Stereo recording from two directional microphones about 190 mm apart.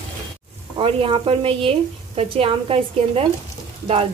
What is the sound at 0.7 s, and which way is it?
A woman's voice, 30° right (ahead or behind).